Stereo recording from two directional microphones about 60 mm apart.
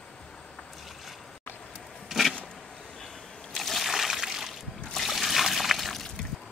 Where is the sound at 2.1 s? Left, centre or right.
Centre.